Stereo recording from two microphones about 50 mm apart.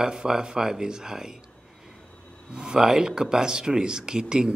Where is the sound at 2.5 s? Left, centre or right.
Centre.